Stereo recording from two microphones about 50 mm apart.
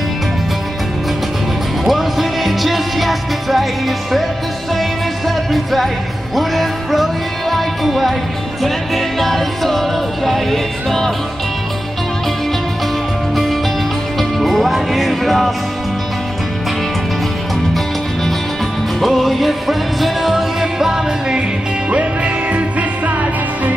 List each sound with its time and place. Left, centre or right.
1.9 s music: centre
5.5 s music: centre
14.4 s music: centre
18.9 s music: centre
21.9 s music: right